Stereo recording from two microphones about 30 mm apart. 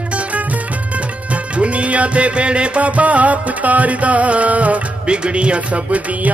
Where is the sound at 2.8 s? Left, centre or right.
Right.